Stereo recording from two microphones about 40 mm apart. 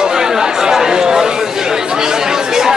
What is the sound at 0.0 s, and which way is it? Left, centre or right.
Chatter, centre.